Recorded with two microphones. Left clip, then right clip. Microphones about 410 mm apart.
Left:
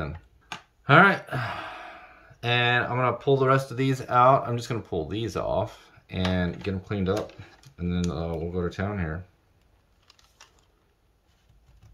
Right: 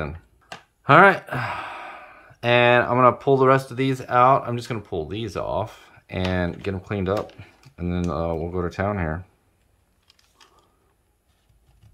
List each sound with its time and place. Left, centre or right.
0.8 s speech: centre